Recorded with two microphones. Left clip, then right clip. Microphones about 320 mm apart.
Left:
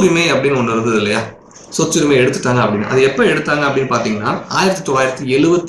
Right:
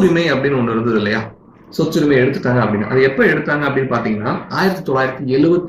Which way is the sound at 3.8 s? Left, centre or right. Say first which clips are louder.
Left 2 dB; centre.